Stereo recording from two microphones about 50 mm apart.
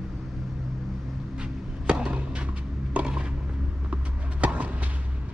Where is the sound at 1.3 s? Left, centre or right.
Centre.